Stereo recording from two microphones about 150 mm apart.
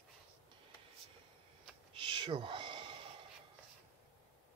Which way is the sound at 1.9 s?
35° right (ahead or behind).